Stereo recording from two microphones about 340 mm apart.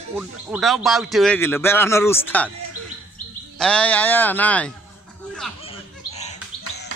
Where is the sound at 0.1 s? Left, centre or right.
Centre.